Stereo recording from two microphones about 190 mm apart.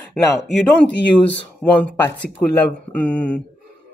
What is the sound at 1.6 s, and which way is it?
Speech, 10° left (ahead or behind).